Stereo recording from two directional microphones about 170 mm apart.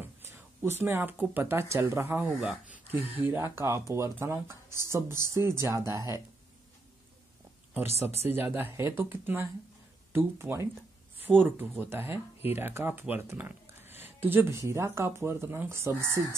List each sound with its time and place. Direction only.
0.0 s speech: 15° right (ahead or behind)
2.9 s speech: 35° left (ahead or behind)
3.2 s speech: 10° right (ahead or behind)
8.3 s speech: 10° right (ahead or behind)
15.9 s speech: 20° left (ahead or behind)